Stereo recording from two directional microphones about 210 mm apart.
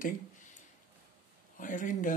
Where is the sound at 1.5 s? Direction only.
40° left (ahead or behind).